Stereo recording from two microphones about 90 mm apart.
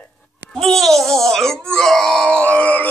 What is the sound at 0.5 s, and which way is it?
Wail, 5° left (ahead or behind).